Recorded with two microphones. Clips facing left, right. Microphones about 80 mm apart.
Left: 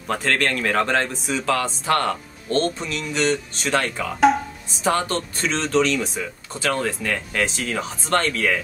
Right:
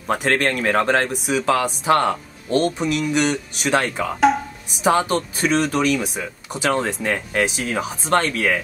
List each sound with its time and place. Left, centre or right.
0.1 s speech: centre
4.2 s music: centre
4.8 s speech: centre